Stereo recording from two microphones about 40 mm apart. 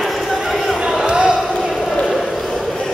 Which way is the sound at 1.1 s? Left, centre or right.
Right.